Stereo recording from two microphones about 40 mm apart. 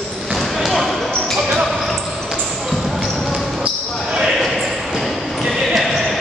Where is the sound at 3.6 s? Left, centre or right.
Centre.